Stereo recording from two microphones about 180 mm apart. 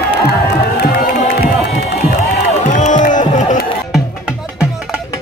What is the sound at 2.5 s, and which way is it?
Music, 40° left (ahead or behind).